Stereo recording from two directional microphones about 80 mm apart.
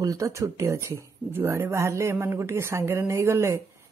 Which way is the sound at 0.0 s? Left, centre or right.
Right.